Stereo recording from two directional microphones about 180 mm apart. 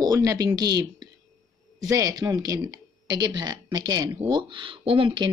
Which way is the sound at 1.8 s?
15° right (ahead or behind).